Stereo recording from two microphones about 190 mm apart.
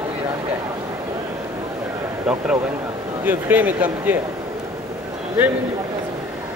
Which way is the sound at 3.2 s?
10° right (ahead or behind).